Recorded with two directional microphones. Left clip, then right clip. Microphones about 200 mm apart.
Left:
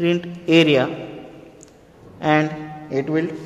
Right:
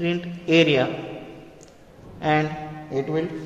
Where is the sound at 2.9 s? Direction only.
45° left (ahead or behind).